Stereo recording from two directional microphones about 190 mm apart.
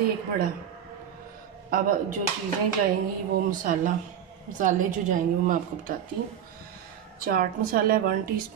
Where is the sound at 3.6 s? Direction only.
40° right (ahead or behind).